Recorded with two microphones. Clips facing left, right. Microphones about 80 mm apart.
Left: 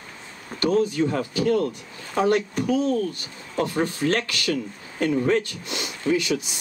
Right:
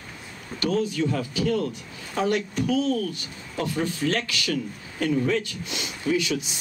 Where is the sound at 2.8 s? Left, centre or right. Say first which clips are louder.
Left 2 dB; left.